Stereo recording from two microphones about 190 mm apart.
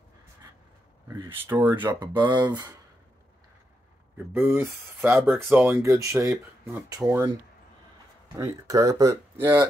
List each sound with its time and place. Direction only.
1.0 s speech: 15° right (ahead or behind)
2.1 s speech: 25° right (ahead or behind)
4.3 s speech: 15° right (ahead or behind)